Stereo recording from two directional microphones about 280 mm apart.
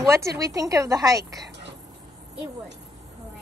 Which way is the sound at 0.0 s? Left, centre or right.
Centre.